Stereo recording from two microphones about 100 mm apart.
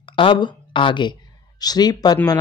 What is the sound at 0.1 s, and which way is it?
Speech, 55° left (ahead or behind).